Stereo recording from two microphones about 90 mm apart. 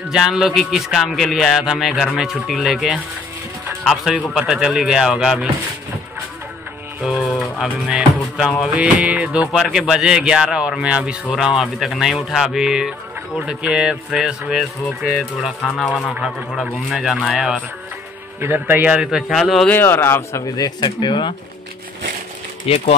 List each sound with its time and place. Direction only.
0.1 s speech: 5° right (ahead or behind)
7.2 s music: centre (ahead or behind)
7.9 s speech: 5° right (ahead or behind)
14.9 s speech: centre (ahead or behind)
18.4 s a man's voice: 25° right (ahead or behind)
18.9 s speech: 5° right (ahead or behind)
19.7 s a man's voice: 25° left (ahead or behind)
20.5 s speech: 50° left (ahead or behind)
22.7 s speech: 90° left